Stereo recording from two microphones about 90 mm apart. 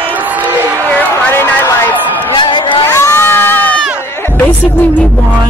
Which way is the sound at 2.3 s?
65° left (ahead or behind).